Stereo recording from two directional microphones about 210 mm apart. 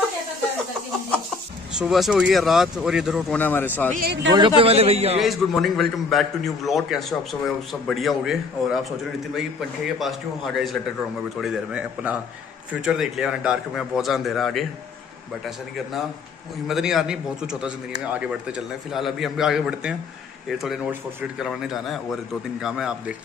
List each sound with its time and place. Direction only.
1.7 s a man's voice: 5° right (ahead or behind)
3.3 s speech: 10° left (ahead or behind)
3.9 s a man's voice: 50° right (ahead or behind)
4.3 s a man's voice: 25° right (ahead or behind)
5.2 s a man's voice: centre (ahead or behind)